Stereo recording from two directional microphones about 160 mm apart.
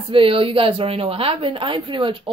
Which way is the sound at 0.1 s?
35° right (ahead or behind).